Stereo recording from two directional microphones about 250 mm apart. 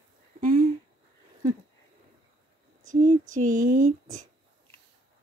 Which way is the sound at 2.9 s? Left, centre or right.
Right.